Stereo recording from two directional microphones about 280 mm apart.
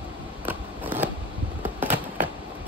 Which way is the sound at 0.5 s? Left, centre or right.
Centre.